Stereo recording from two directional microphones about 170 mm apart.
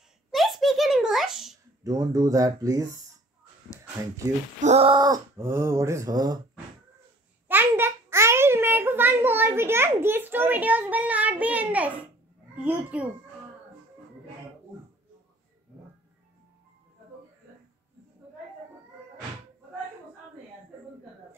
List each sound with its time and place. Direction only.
0.3 s a sound: centre (ahead or behind)
1.9 s speech: 20° right (ahead or behind)
4.6 s speech: 40° right (ahead or behind); by 6.4 s 20° right (ahead or behind)
7.4 s a child's voice: 10° right (ahead or behind)